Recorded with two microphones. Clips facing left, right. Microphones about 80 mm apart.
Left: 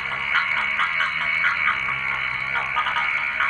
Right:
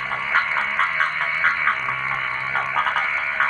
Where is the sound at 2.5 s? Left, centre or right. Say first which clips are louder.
Right 2 dB; right.